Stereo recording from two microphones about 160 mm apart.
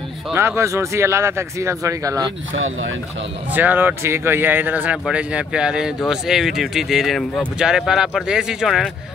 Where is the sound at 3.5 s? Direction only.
10° right (ahead or behind).